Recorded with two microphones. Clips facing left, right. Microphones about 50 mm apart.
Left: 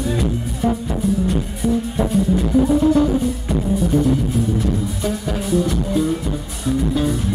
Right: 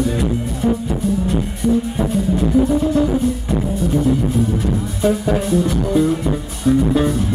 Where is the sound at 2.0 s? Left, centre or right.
Centre.